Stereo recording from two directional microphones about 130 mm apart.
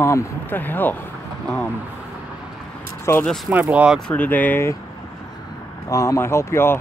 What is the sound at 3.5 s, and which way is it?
Speech, 10° right (ahead or behind).